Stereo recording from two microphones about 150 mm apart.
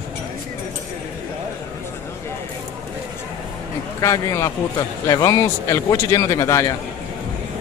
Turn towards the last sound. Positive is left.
turn(degrees=20)  # may be behind; listen again after turning